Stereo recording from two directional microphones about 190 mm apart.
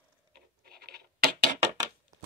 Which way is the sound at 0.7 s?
55° right (ahead or behind).